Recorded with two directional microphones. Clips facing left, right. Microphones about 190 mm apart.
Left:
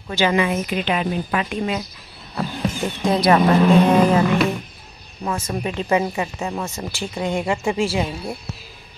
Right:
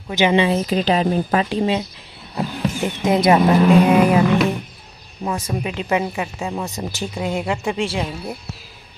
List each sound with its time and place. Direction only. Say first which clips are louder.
0.1 s speech: right 3 dB; 20° right (ahead or behind)
2.3 s a sound: right 1 dB; 20° right (ahead or behind)
3.3 s speech: even; 10° right (ahead or behind)
7.2 s speech: left 1 dB; 5° right (ahead or behind)